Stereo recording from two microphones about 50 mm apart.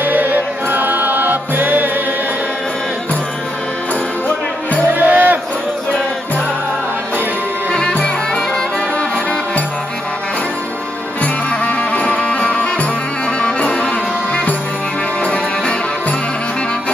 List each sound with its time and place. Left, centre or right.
0.0 s music: right
4.8 s music: right
8.0 s music: centre
11.6 s music: left